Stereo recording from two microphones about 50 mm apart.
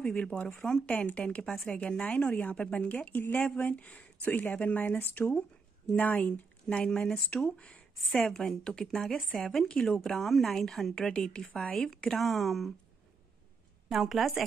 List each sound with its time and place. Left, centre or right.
0.0 s speech: centre
1.4 s speech: centre
1.8 s speech: left
6.8 s a woman's voice: centre
13.8 s a woman's voice: centre